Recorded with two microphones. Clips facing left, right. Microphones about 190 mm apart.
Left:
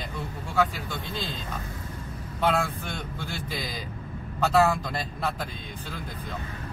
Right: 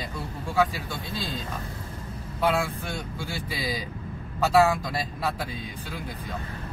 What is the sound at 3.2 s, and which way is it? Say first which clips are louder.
Speech: right 1 dB; 10° right (ahead or behind).